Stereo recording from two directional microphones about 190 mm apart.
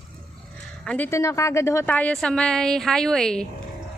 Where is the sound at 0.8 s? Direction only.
10° left (ahead or behind).